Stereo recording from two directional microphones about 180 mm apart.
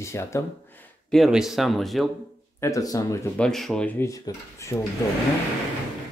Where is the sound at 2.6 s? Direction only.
20° left (ahead or behind).